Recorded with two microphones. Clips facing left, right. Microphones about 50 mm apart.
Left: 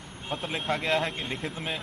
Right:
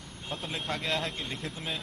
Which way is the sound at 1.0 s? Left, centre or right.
Left.